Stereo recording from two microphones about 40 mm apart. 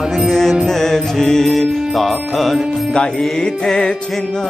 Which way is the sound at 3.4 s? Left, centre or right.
Left.